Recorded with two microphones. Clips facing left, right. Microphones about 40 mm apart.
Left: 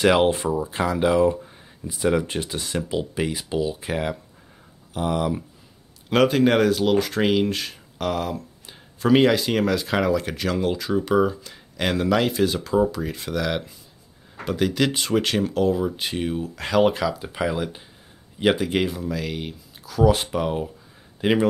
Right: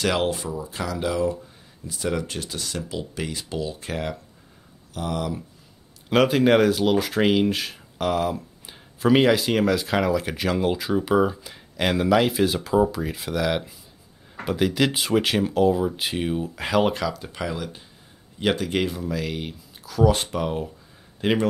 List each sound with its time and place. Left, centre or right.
0.0 s speech: left
0.3 s speech: left
2.0 s speech: centre
6.0 s speech: centre
17.1 s speech: centre